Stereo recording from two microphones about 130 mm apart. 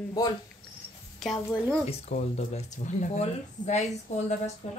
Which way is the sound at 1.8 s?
55° left (ahead or behind).